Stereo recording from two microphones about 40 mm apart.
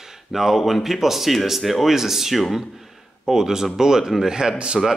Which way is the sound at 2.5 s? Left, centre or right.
Centre.